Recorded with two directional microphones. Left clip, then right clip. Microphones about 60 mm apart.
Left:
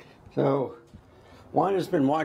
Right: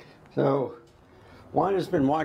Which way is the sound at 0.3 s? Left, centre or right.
Centre.